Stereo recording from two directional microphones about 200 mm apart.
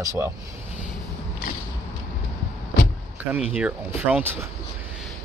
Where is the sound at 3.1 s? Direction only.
5° right (ahead or behind).